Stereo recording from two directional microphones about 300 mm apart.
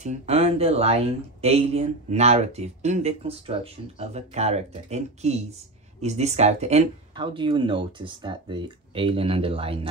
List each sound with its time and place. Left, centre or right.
0.0 s speech: right